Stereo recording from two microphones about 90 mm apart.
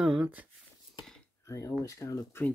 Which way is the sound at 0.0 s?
15° right (ahead or behind).